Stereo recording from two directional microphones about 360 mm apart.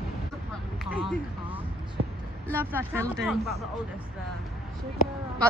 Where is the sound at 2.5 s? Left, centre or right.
Centre.